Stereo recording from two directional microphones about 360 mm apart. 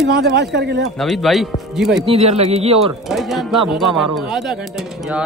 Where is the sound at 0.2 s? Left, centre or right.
Right.